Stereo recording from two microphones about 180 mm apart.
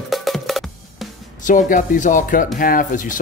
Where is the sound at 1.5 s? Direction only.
45° left (ahead or behind).